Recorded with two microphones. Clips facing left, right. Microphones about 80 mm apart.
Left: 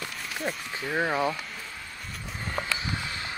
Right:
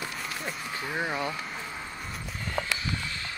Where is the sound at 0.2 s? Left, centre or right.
Centre.